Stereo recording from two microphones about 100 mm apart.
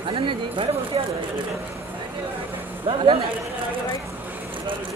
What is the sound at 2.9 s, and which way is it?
Speech, 70° right (ahead or behind).